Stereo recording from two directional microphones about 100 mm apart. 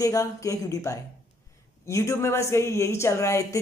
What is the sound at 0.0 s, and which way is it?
Speech, 35° left (ahead or behind).